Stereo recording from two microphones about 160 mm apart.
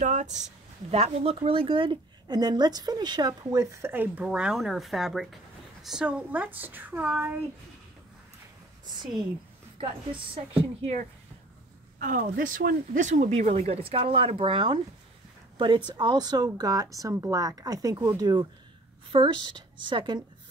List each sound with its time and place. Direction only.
0.0 s speech: 45° right (ahead or behind); by 7.4 s 10° right (ahead or behind)
9.8 s a woman's voice: 35° right (ahead or behind)
12.0 s speech: 55° right (ahead or behind); by 20.2 s 30° right (ahead or behind)